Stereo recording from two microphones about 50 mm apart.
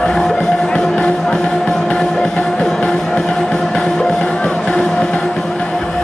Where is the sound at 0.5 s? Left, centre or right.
Centre.